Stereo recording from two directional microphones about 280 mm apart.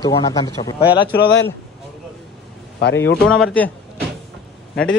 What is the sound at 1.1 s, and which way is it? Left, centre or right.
Speech, left.